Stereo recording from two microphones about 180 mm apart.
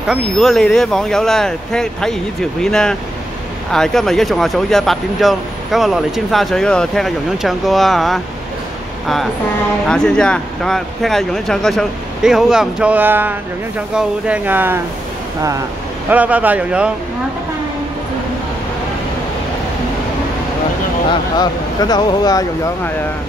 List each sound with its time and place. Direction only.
0.1 s speech: centre (ahead or behind)
16.1 s speech: 10° right (ahead or behind)
21.4 s speech: 20° left (ahead or behind)